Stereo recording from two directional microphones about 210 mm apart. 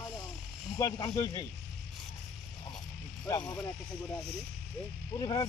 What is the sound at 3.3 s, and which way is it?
Speech, 20° left (ahead or behind).